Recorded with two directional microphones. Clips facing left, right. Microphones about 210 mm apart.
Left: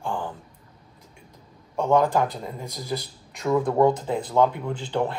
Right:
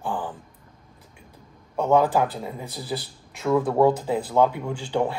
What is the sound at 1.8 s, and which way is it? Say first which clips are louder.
Speech: right 1 dB; 5° right (ahead or behind).